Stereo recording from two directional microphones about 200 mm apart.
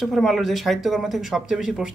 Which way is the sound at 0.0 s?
Centre (ahead or behind).